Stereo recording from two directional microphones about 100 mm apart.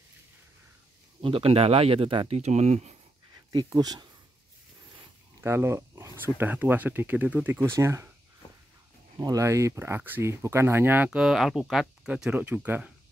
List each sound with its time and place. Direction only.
1.2 s speech: 70° right (ahead or behind); by 3.0 s 90° right
3.5 s speech: 40° right (ahead or behind)
5.4 s dog: 25° right (ahead or behind)
6.1 s speech: 20° right (ahead or behind)
9.2 s speech: 35° right (ahead or behind)
11.1 s speech: 5° right (ahead or behind)
12.1 s speech: 15° right (ahead or behind)